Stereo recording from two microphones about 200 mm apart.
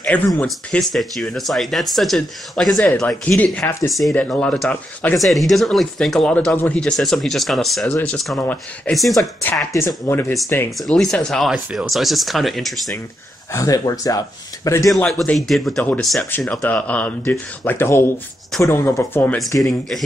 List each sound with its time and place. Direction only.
0.0 s speech: 5° left (ahead or behind)
10.8 s speech: centre (ahead or behind)
13.5 s speech: 15° left (ahead or behind)
15.0 s speech: centre (ahead or behind)